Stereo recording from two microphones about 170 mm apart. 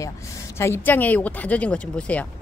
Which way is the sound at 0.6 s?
15° left (ahead or behind).